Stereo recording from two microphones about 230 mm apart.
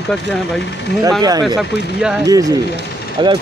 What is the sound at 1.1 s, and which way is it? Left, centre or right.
Speech, centre.